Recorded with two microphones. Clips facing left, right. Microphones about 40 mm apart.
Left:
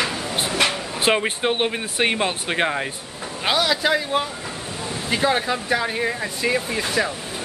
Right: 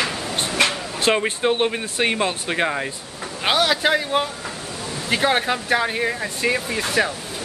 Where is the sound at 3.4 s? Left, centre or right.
Centre.